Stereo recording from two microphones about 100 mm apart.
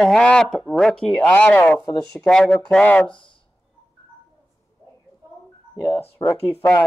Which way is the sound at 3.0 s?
55° left (ahead or behind).